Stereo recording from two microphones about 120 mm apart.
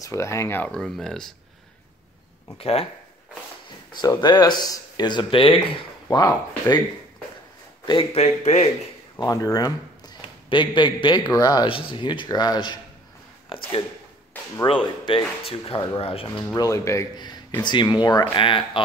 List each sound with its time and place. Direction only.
0.0 s speech: 25° left (ahead or behind)
0.7 s speech: 5° left (ahead or behind)
2.5 s speech: 55° left (ahead or behind)
3.9 s speech: 35° left (ahead or behind)
6.0 s speech: 30° left (ahead or behind)
7.8 s a man's voice: 40° left (ahead or behind)
8.1 s speech: 65° left (ahead or behind)
9.1 s speech: 30° left (ahead or behind)
14.3 s a sound: 15° left (ahead or behind)
14.7 s speech: 40° left (ahead or behind)
16.5 s speech: 30° left (ahead or behind)
17.6 s speech: 35° left (ahead or behind)
18.3 s speech: 45° left (ahead or behind)